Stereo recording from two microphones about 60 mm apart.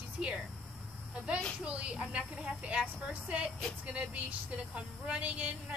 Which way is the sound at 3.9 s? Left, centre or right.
Right.